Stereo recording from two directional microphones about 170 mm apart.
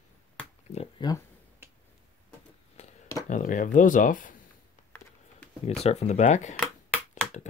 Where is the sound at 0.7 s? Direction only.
35° left (ahead or behind).